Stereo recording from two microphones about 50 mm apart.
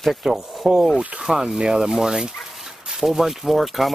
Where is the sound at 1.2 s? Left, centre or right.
Centre.